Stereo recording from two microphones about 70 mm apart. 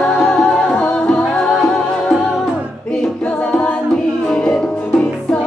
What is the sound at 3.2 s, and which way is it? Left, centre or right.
Music, left.